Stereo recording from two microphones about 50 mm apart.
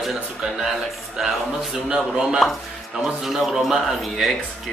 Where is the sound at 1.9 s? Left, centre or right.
Centre.